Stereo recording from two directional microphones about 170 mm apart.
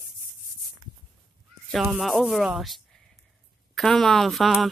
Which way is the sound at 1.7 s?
5° right (ahead or behind).